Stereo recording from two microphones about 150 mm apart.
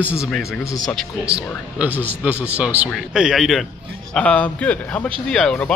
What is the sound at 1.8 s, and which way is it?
A man's voice, 10° right (ahead or behind).